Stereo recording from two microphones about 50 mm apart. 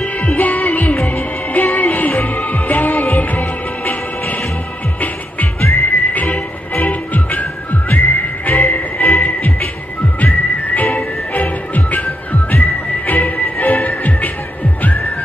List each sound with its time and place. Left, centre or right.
0.0 s music: left
10.2 s whistling: left
11.3 s music: left